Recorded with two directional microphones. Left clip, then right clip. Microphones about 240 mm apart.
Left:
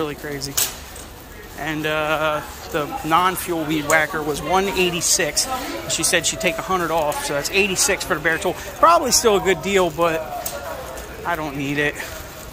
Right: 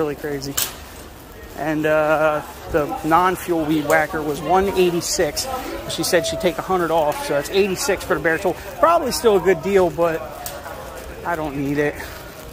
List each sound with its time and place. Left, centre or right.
0.0 s speech: centre
1.6 s speech: centre
11.2 s speech: centre